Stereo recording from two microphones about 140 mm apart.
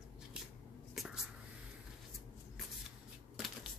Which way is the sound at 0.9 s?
5° right (ahead or behind).